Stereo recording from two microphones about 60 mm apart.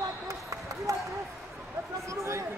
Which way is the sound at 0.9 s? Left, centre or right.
Right.